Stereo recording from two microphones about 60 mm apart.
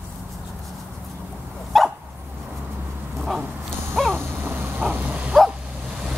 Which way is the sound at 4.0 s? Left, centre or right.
Centre.